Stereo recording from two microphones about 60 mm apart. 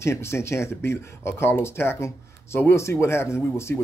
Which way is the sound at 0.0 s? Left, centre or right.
Left.